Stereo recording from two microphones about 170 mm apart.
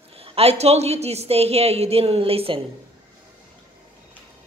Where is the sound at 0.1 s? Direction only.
35° right (ahead or behind).